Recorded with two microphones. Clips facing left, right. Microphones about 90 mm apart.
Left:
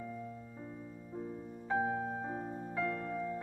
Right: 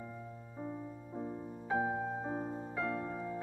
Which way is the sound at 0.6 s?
25° right (ahead or behind).